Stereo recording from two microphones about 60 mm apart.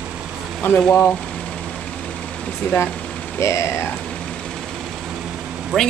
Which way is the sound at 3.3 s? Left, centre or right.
Left.